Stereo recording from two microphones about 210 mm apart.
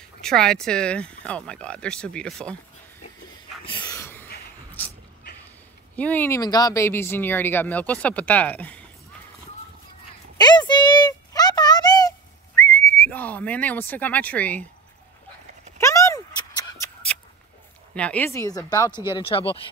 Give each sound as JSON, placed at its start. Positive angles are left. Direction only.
{"t": 0.2, "sound": "speech", "side_deg": 0}
{"t": 3.3, "sound": "wheeze", "side_deg": 20}
{"t": 5.9, "sound": "speech", "side_deg": 5}
{"t": 10.3, "sound": "a sound", "side_deg": 20}
{"t": 12.5, "sound": "whistling", "side_deg": 10}
{"t": 15.8, "sound": "a sound", "side_deg": 15}
{"t": 17.9, "sound": "speech", "side_deg": 5}